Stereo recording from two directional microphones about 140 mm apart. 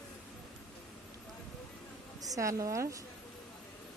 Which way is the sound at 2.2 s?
25° right (ahead or behind).